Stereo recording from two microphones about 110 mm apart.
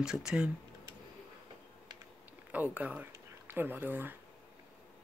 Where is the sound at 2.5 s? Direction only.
15° right (ahead or behind).